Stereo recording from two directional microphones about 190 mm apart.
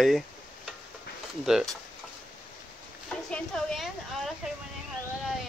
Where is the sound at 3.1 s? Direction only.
5° left (ahead or behind).